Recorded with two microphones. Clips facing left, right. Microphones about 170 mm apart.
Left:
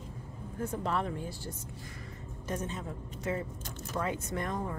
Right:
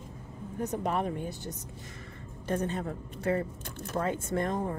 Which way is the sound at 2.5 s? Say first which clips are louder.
Right 6 dB; 60° right (ahead or behind).